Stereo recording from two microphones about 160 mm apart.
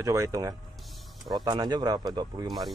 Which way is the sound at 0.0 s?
20° right (ahead or behind).